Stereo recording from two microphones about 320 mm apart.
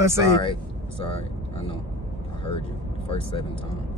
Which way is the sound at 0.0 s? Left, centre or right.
Centre.